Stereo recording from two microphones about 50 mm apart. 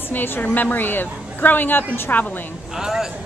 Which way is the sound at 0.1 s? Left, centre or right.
Left.